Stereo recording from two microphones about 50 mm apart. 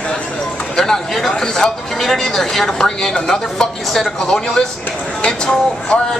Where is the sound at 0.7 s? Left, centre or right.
Centre.